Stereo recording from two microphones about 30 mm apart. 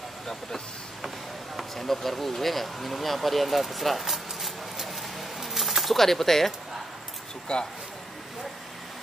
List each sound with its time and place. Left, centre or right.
1.6 s speech: centre
4.0 s a sound: centre
5.9 s speech: centre
7.5 s speech: left